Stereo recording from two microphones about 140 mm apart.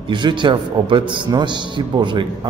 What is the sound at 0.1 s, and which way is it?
A man's voice, 35° right (ahead or behind).